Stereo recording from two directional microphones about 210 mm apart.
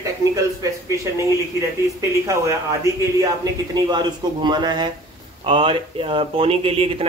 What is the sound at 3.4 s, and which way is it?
Speech, 20° right (ahead or behind).